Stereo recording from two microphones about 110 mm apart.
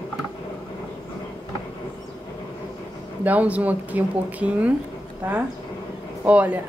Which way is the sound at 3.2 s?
15° right (ahead or behind).